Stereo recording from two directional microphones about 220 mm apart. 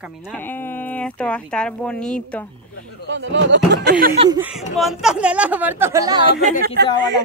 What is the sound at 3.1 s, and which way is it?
Speech, 55° right (ahead or behind).